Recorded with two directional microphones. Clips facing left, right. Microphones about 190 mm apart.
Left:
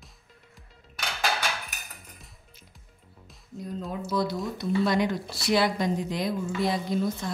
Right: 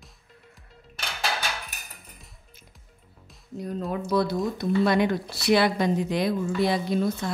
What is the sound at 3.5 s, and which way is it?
Speech, 65° right (ahead or behind).